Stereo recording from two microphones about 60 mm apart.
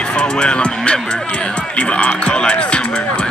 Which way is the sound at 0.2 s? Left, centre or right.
Centre.